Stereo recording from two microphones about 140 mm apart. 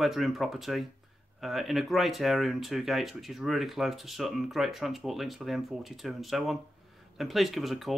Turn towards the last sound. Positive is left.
turn(degrees=0)  # may be behind; listen again after turning